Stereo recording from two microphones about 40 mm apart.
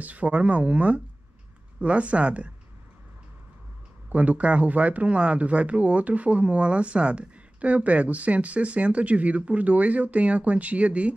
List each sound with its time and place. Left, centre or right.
0.0 s speech: right
4.1 s speech: right